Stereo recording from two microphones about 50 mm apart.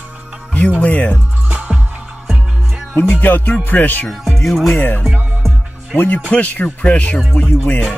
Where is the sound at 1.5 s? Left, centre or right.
Right.